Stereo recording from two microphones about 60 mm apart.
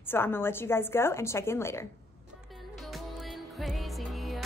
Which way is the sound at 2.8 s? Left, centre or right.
Centre.